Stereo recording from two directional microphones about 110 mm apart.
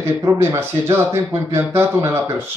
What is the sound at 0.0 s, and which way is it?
Speech, 20° right (ahead or behind).